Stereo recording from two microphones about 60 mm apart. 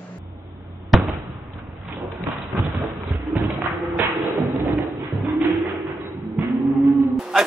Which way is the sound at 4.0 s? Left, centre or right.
Right.